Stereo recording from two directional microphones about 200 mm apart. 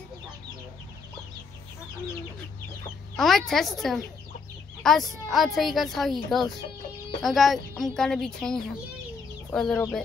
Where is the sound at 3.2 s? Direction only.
Centre (ahead or behind).